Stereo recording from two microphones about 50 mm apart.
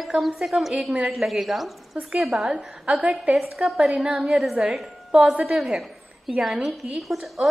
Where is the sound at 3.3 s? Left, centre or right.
Centre.